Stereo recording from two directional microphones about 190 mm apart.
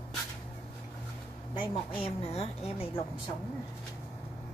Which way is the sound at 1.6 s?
30° left (ahead or behind).